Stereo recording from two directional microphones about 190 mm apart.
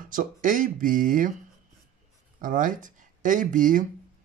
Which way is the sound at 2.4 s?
45° right (ahead or behind).